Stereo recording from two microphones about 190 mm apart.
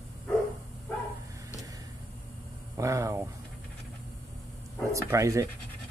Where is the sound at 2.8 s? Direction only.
15° right (ahead or behind).